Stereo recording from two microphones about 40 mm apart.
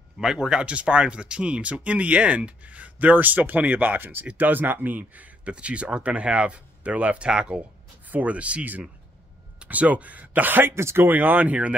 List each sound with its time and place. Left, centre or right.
0.2 s speech: centre; by 5.3 s right
5.4 s speech: right
7.5 s speech: right
8.1 s speech: right
9.7 s speech: right
10.6 s speech: right
11.1 s speech: right